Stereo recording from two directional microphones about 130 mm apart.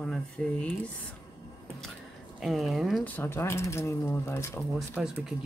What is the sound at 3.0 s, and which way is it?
Speech, 15° left (ahead or behind).